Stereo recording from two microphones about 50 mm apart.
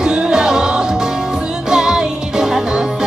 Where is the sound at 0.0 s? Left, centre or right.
Centre.